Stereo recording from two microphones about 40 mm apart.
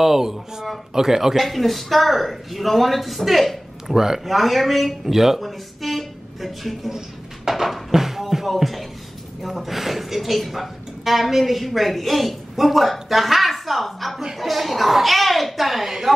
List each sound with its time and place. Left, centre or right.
0.0 s speech: centre
1.4 s speech: centre
4.4 s speech: centre